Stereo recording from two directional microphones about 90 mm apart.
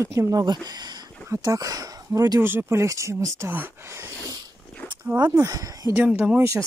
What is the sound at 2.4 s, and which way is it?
Speech, 25° right (ahead or behind).